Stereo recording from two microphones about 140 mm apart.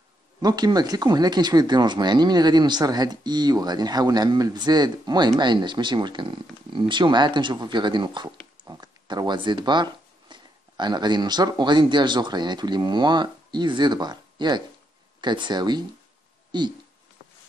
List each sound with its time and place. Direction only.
0.4 s speech: 30° right (ahead or behind)